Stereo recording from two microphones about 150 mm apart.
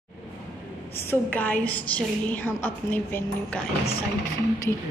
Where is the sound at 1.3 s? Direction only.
10° left (ahead or behind).